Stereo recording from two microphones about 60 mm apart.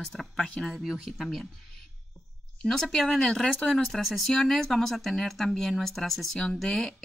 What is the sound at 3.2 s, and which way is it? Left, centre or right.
Speech, centre.